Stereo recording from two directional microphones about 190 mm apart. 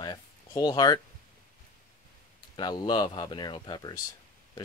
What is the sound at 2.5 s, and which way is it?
Speech, 20° left (ahead or behind).